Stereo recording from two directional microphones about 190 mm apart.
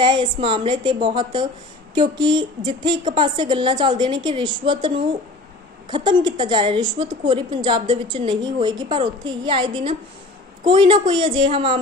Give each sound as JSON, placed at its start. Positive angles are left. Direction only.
{"t": 0.0, "sound": "a woman's voice", "side_deg": -25}